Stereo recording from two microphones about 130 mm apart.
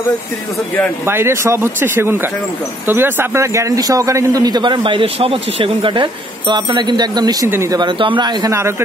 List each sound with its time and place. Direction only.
1.0 s speech: 20° right (ahead or behind)
8.5 s speech: 20° right (ahead or behind)